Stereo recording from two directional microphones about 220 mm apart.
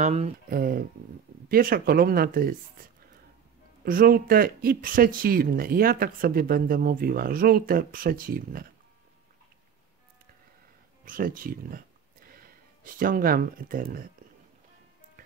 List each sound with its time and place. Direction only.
0.0 s speech: 30° right (ahead or behind)
0.5 s speech: 40° right (ahead or behind)
3.8 s speech: 40° right (ahead or behind)
11.1 s speech: 40° right (ahead or behind)
12.8 s speech: 40° right (ahead or behind)